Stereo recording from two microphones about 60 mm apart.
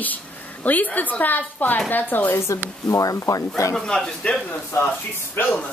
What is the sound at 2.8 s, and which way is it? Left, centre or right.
Speech, left.